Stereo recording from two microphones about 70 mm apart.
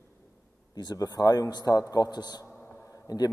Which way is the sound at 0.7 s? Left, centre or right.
Left.